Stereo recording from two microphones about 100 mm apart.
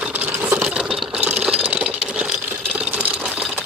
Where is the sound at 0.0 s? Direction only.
15° right (ahead or behind).